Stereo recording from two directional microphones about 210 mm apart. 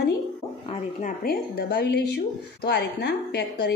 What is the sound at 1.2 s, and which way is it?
Speech, 45° left (ahead or behind).